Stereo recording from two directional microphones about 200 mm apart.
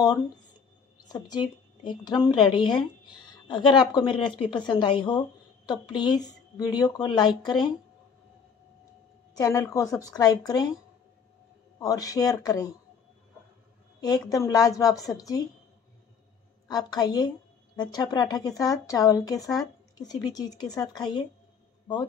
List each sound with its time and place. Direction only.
1.0 s speech: 20° left (ahead or behind)
9.4 s a woman's voice: 15° left (ahead or behind)
11.8 s a woman's voice: 15° left (ahead or behind)
14.3 s a woman's voice: 15° left (ahead or behind)
16.6 s a woman's voice: 20° left (ahead or behind)